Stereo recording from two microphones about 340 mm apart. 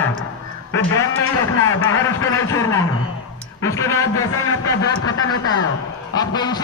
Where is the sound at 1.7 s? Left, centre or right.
Left.